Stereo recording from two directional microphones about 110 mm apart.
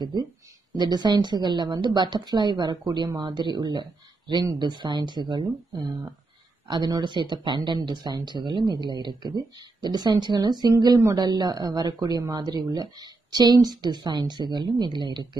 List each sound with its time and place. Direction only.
0.0 s speech: 40° right (ahead or behind)